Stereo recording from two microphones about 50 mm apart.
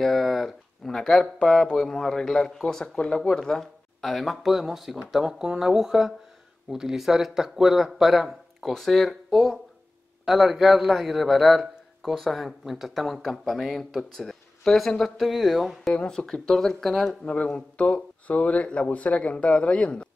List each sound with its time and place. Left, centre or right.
0.0 s speech: centre
3.2 s speech: centre
17.1 s speech: left